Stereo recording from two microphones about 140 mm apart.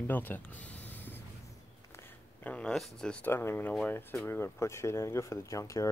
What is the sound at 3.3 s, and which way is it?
Speech, 15° left (ahead or behind).